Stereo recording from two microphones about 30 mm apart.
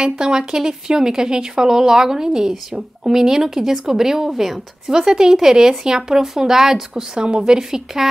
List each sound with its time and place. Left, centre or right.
0.0 s speech: right
7.2 s speech: right